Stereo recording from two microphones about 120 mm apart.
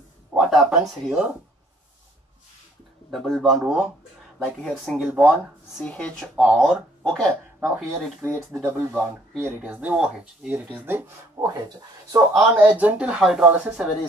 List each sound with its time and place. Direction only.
0.3 s speech: 5° right (ahead or behind)
3.1 s speech: centre (ahead or behind)
4.9 s speech: 10° right (ahead or behind)
5.8 s speech: 10° left (ahead or behind)
6.3 s speech: 5° right (ahead or behind)
6.6 s speech: 5° left (ahead or behind)
7.6 s speech: 20° right (ahead or behind)
11.4 s speech: 30° right (ahead or behind)
12.5 s speech: 15° right (ahead or behind)